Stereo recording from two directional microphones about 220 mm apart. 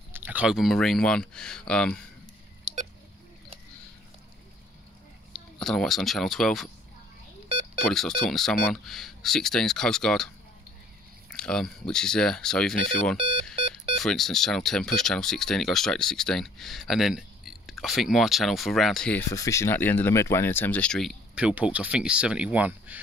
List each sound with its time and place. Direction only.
0.1 s speech: 5° right (ahead or behind)
5.3 s speech: centre (ahead or behind)
7.4 s beep: 25° right (ahead or behind)
7.8 s speech: centre (ahead or behind)
13.6 s a sound: 25° right (ahead or behind)
13.9 s speech: centre (ahead or behind)